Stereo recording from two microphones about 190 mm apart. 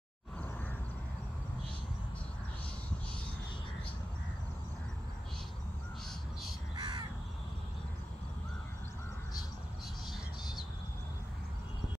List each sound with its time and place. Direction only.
6.8 s crow: 25° right (ahead or behind)